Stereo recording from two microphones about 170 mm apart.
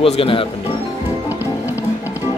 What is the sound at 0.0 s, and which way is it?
Speech, 30° left (ahead or behind).